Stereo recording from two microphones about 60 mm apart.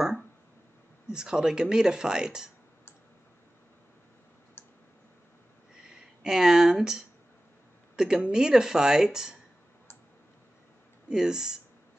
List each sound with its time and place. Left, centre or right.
1.1 s speech: centre
5.9 s speech: centre
11.1 s speech: centre